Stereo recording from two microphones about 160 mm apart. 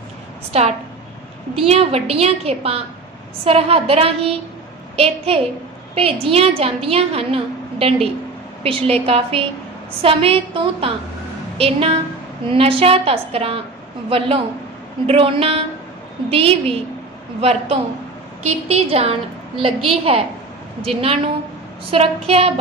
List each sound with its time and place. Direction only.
0.5 s a woman's voice: 40° right (ahead or behind)